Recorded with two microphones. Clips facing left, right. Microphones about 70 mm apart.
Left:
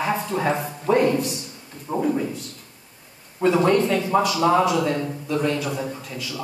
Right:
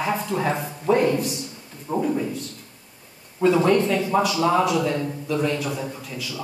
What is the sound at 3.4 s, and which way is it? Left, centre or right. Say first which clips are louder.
Speech: even; centre.